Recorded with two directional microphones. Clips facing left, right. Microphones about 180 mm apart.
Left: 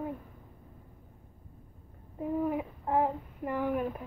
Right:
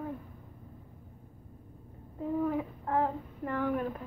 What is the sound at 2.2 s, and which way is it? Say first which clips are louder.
Speech: even; 15° left (ahead or behind).